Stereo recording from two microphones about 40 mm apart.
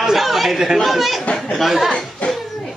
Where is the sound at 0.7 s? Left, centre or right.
Centre.